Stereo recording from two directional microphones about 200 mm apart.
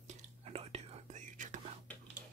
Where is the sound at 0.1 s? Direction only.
30° right (ahead or behind).